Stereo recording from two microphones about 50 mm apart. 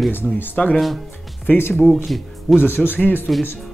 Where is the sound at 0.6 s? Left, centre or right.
Left.